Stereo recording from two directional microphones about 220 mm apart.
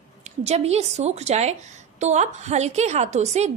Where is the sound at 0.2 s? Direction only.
30° right (ahead or behind).